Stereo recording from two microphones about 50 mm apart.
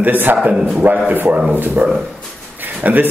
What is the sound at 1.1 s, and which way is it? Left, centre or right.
Speech, right.